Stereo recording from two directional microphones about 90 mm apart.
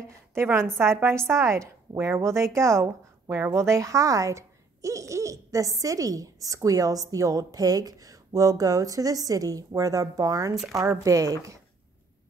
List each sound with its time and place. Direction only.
0.3 s speech: 30° right (ahead or behind)